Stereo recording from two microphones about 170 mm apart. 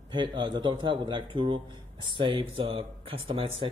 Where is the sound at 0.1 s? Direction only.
25° right (ahead or behind).